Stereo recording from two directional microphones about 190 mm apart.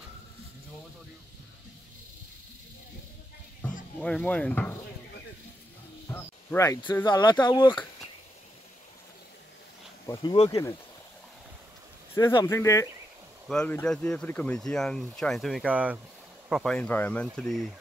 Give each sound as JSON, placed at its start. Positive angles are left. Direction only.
{"t": 4.0, "sound": "speech", "side_deg": 5}
{"t": 6.0, "sound": "a sound", "side_deg": 15}
{"t": 7.1, "sound": "speech", "side_deg": 20}
{"t": 10.1, "sound": "speech", "side_deg": 30}
{"t": 10.5, "sound": "speech", "side_deg": 20}
{"t": 12.2, "sound": "speech", "side_deg": 15}